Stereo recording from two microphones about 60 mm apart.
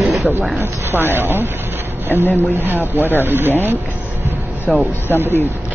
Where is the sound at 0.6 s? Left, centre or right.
Right.